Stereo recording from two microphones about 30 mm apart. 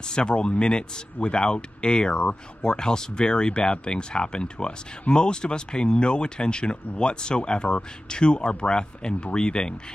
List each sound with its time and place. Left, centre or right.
0.0 s speech: left